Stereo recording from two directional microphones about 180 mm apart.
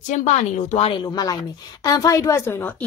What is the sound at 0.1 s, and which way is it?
A woman's voice, 40° left (ahead or behind).